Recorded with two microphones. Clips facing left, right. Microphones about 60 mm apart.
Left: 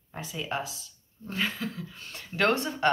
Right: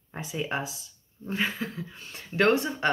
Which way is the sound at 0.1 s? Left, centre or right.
Right.